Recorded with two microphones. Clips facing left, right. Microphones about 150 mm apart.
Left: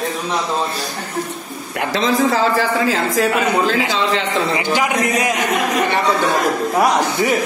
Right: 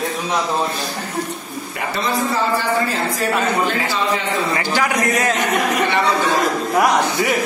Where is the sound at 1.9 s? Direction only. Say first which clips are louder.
Left 4 dB; 90° left.